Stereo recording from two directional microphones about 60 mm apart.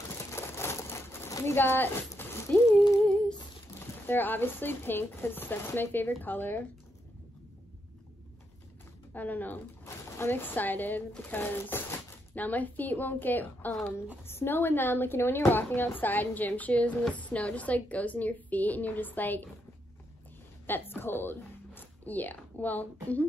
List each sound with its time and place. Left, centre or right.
0.3 s crumpling: left
1.4 s speech: left
2.5 s a woman's voice: left
3.8 s speech: left
9.1 s a woman's voice: left
9.8 s speech: left
14.2 s a woman's voice: left
20.6 s a woman's voice: left